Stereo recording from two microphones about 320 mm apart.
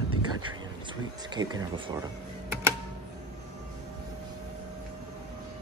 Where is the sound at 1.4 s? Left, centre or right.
Centre.